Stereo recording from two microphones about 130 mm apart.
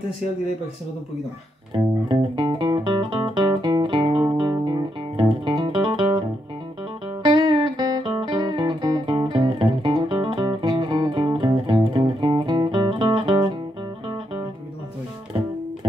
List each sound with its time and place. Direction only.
1.7 s music: 35° right (ahead or behind)
7.2 s music: 35° right (ahead or behind)